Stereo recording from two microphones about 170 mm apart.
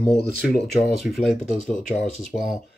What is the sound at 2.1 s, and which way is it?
Speech, 35° right (ahead or behind).